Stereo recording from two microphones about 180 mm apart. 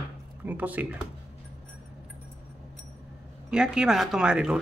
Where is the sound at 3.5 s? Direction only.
5° right (ahead or behind).